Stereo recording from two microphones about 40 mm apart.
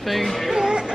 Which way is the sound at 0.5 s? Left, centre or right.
Centre.